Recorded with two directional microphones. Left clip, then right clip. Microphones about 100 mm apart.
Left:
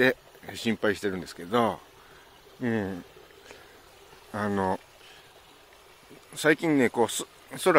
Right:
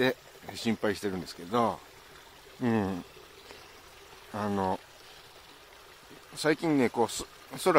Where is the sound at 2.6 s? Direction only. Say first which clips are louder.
Even; 35° right (ahead or behind).